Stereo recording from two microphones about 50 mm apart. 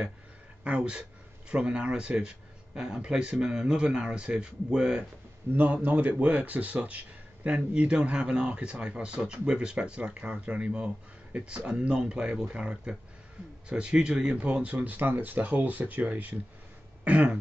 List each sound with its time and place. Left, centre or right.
0.7 s speech: right
5.6 s speech: right; by 14.4 s centre
14.4 s speech: right